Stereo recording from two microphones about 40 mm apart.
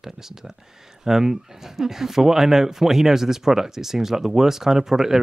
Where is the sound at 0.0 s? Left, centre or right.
Centre.